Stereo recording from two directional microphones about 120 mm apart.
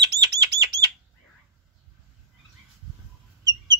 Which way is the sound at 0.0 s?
35° right (ahead or behind).